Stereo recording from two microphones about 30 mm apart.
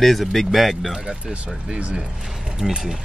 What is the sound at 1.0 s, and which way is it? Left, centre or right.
Speech, right.